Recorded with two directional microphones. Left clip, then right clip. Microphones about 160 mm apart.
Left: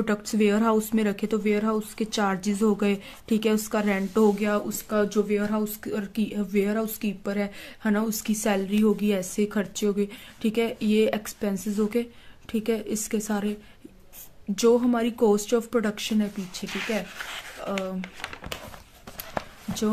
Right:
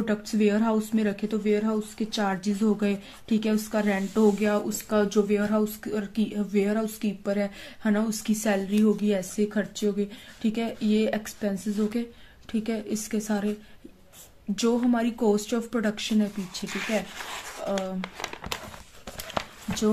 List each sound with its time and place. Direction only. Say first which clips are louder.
0.0 s a woman's voice: left 1 dB; 35° left (ahead or behind)